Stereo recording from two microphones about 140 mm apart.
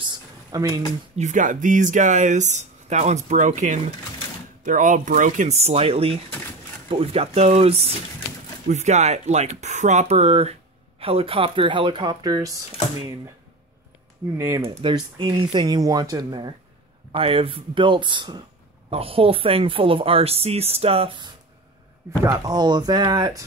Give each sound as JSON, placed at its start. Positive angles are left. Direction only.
{"t": 0.1, "sound": "a sound", "side_deg": -30}
{"t": 1.1, "sound": "speech", "side_deg": -60}
{"t": 14.3, "sound": "speech", "side_deg": -20}
{"t": 14.6, "sound": "speech", "side_deg": -35}
{"t": 22.2, "sound": "speech", "side_deg": -25}